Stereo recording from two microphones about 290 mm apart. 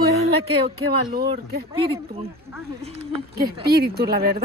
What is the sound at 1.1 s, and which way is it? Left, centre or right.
Speech, right.